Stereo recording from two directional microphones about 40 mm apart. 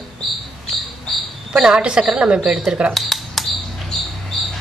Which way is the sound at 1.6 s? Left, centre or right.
Centre.